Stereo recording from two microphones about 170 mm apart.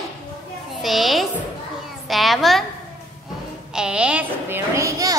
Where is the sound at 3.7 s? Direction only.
5° right (ahead or behind).